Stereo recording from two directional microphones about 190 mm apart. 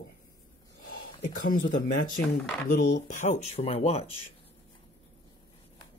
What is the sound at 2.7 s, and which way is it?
Speech, 40° left (ahead or behind).